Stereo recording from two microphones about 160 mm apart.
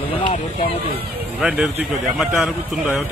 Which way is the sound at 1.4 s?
5° right (ahead or behind).